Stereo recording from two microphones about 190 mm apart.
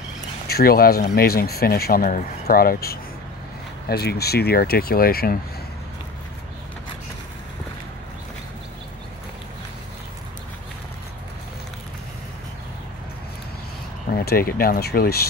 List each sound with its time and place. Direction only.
0.5 s speech: 55° left (ahead or behind)
14.1 s speech: 50° left (ahead or behind)